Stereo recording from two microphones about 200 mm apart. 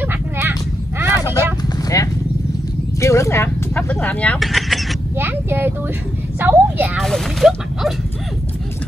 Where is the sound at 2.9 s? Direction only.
15° left (ahead or behind).